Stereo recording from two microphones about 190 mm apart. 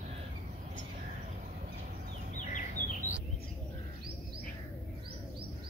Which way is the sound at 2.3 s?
40° left (ahead or behind).